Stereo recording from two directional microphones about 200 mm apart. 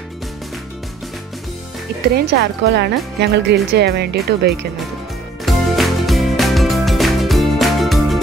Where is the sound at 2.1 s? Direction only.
60° right (ahead or behind).